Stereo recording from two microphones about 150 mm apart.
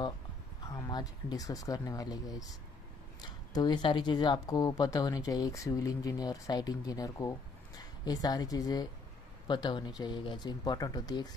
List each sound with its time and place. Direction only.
0.7 s speech: 25° left (ahead or behind)